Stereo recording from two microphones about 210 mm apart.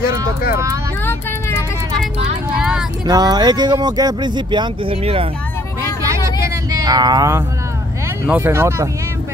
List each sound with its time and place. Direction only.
1.9 s vehicle: 25° right (ahead or behind)
3.1 s speech: 20° right (ahead or behind)
6.0 s a sound: 15° right (ahead or behind)
8.3 s speech: 10° right (ahead or behind)